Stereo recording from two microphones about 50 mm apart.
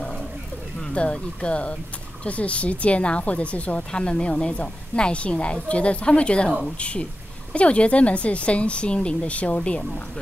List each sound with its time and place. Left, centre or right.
0.7 s speech: centre